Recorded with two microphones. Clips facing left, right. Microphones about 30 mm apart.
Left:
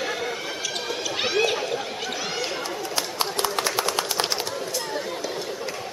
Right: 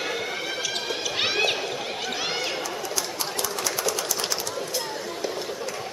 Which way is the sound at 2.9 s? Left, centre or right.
Left.